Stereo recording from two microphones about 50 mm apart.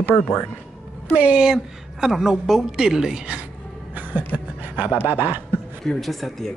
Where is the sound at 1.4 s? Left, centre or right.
Centre.